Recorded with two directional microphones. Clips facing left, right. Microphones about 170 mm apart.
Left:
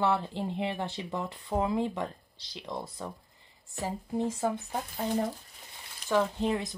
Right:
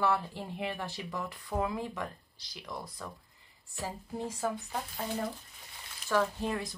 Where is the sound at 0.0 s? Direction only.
20° left (ahead or behind).